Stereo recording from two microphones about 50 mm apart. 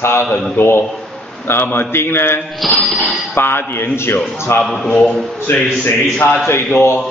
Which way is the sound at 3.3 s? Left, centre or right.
Left.